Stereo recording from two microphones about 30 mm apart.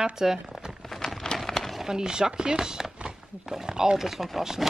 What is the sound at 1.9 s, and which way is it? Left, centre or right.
Speech, right.